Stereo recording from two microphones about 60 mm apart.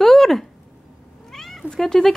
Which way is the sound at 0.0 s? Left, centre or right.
Centre.